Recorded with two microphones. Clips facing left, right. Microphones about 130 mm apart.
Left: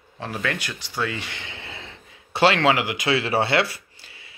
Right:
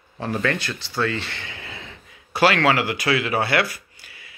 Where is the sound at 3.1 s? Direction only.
30° left (ahead or behind).